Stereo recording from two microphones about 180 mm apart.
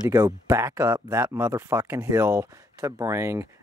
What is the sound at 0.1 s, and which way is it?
Speech, 15° right (ahead or behind).